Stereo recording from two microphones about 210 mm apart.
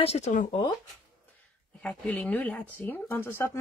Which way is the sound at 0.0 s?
30° left (ahead or behind).